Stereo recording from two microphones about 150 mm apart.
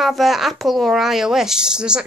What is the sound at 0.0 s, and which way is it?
Speech, centre (ahead or behind).